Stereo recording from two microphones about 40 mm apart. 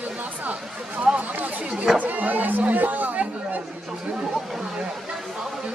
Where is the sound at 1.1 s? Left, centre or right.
Right.